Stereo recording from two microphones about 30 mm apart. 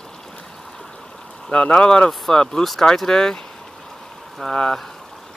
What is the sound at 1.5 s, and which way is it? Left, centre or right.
Speech, left.